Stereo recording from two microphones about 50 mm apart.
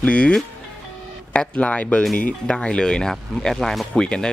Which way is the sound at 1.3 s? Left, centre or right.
Left.